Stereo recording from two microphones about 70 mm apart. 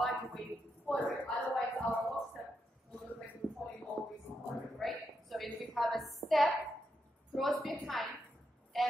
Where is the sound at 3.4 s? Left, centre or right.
Right.